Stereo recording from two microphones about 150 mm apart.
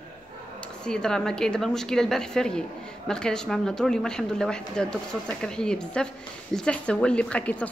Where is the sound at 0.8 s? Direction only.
5° left (ahead or behind).